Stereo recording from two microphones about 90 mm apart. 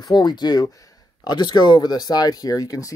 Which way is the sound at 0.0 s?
55° left (ahead or behind).